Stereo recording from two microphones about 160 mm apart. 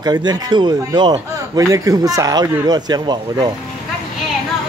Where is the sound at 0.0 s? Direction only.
25° right (ahead or behind).